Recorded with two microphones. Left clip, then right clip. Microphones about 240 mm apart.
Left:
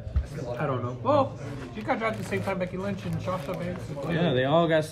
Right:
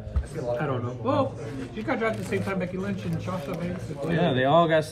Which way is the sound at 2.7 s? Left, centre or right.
Left.